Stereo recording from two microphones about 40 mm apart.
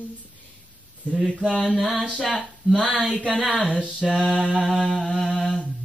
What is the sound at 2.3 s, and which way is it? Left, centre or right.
Speech, centre.